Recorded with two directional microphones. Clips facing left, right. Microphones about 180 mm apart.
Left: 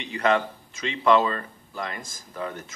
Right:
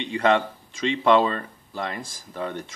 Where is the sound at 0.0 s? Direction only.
30° right (ahead or behind).